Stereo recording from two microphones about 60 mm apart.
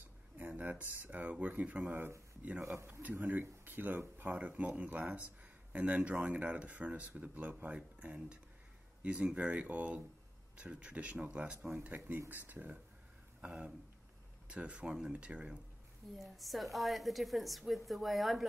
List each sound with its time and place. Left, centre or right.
0.4 s speech: right
1.9 s speech: right
13.4 s speech: centre
16.2 s a woman's voice: centre